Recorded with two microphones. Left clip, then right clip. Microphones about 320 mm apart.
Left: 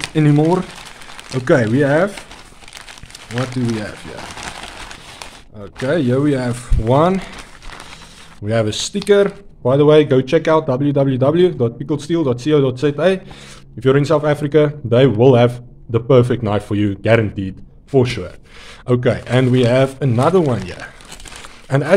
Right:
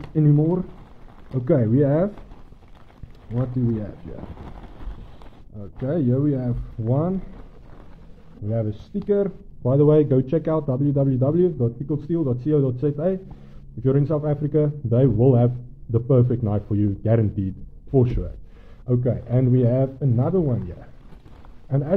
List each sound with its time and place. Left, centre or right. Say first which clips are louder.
0.1 s a man's voice: left 6 dB; centre
1.4 s speech: left 6 dB; centre
5.6 s a man's voice: left 7 dB; centre
8.5 s a man's voice: left 11 dB; centre
11.5 s a man's voice: left 7 dB; left
12.3 s a man's voice: left 8 dB; centre
18.9 s a man's voice: left 9 dB; centre
20.2 s a man's voice: left 10 dB; left
21.6 s speech: left 10 dB; centre